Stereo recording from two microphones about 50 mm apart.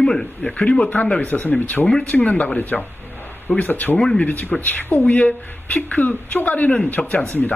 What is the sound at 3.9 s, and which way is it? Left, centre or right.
Speech, centre.